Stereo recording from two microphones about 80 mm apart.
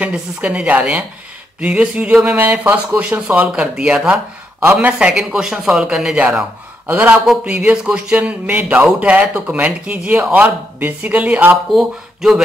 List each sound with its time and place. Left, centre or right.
0.0 s speech: centre
11.7 s speech: centre